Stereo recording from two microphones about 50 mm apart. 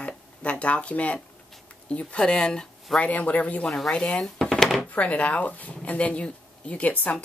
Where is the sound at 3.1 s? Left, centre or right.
Left.